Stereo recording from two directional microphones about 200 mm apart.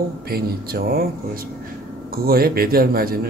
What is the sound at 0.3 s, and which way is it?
Speech, 50° right (ahead or behind).